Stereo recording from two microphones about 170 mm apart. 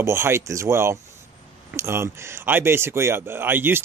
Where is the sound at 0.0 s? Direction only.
15° right (ahead or behind).